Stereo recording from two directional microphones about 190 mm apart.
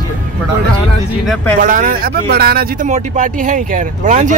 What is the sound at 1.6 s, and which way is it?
Speech, 45° right (ahead or behind).